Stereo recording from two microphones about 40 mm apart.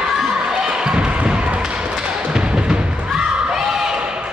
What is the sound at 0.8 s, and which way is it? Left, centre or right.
Basketball bounce, right.